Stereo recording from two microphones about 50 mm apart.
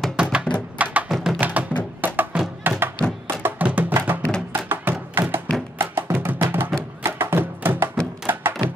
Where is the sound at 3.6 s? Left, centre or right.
Right.